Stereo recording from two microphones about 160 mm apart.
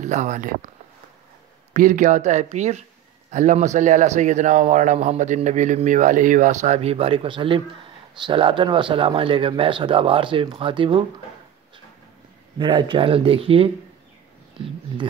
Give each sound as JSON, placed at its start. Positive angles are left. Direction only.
{"t": 0.0, "sound": "a man's voice", "side_deg": -50}
{"t": 1.7, "sound": "a man's voice", "side_deg": -50}
{"t": 12.5, "sound": "speech", "side_deg": -30}